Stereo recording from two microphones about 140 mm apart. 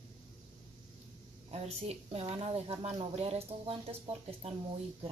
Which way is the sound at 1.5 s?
50° right (ahead or behind).